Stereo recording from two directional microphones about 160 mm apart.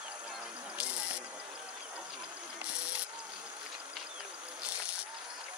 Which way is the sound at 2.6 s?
5° right (ahead or behind).